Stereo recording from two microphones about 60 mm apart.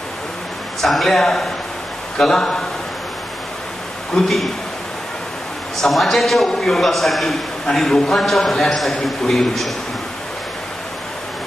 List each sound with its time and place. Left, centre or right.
0.7 s a man's voice: centre
4.1 s a man's voice: centre
5.8 s a man's voice: centre